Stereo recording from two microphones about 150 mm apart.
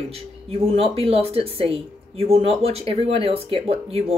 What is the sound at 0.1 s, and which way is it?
Speech, 40° right (ahead or behind).